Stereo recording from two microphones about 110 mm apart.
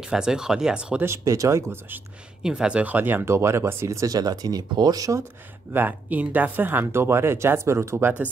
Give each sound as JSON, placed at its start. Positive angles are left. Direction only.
{"t": 0.0, "sound": "speech", "side_deg": -5}
{"t": 1.0, "sound": "speech", "side_deg": -25}
{"t": 2.4, "sound": "speech", "side_deg": -10}
{"t": 5.7, "sound": "speech", "side_deg": -15}